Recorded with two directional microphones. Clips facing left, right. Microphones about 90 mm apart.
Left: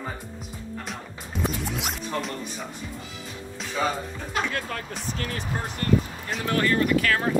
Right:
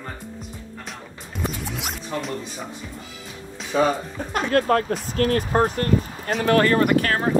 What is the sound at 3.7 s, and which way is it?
Speech, 45° right (ahead or behind).